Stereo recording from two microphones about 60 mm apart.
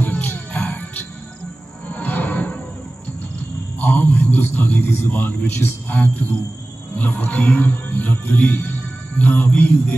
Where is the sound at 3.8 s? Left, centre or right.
Left.